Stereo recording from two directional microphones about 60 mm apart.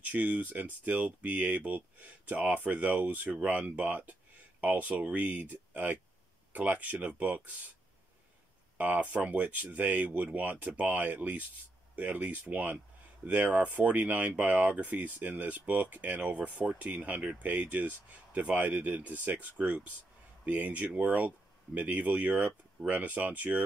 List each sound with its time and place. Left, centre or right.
0.0 s speech: right
8.7 s speech: right